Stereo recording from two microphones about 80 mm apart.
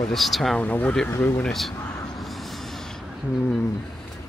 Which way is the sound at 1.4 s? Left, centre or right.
Centre.